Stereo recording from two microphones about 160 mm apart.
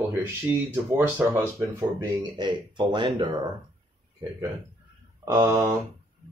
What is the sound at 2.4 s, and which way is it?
Speech, 30° right (ahead or behind).